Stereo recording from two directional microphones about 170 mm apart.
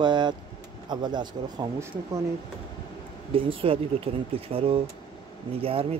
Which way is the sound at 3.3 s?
30° right (ahead or behind).